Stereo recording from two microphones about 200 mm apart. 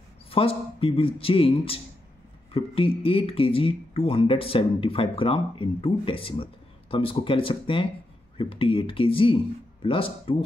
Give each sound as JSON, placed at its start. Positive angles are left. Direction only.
{"t": 0.3, "sound": "speech", "side_deg": 30}